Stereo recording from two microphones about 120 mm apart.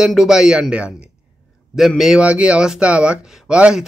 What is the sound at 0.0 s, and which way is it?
Speech, 5° right (ahead or behind).